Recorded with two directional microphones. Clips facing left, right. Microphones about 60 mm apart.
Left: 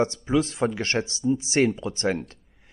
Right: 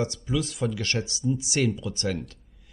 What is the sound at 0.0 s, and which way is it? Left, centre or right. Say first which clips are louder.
Speech: left 5 dB; left.